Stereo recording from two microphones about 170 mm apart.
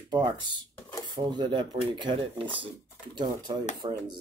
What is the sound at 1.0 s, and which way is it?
Speech, 25° right (ahead or behind).